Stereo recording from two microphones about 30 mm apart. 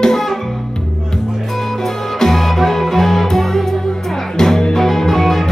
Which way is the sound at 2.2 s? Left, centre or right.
Centre.